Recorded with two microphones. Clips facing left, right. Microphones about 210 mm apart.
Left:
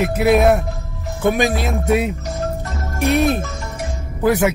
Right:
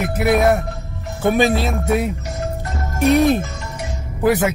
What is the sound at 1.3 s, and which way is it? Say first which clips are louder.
Speech: right 2 dB; 15° left (ahead or behind).